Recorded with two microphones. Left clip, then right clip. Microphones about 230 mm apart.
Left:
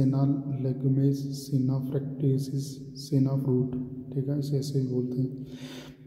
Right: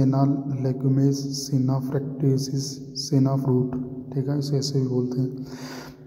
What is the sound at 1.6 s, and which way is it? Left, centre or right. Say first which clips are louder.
A man's voice: right 5 dB; centre.